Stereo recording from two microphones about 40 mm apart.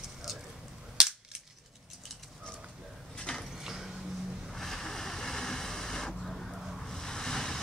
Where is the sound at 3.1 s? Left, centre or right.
Centre.